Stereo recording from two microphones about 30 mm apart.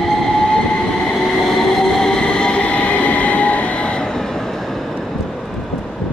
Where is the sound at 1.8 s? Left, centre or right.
Left.